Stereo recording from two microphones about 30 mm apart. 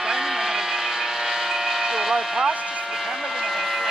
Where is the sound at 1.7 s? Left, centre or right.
Right.